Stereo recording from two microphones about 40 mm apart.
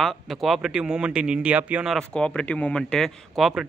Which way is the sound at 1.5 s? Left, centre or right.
Right.